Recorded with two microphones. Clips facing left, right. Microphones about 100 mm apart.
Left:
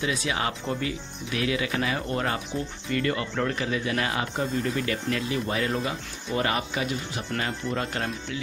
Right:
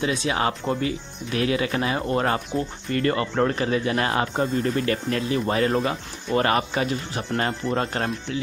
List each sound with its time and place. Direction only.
0.0 s speech: 30° right (ahead or behind)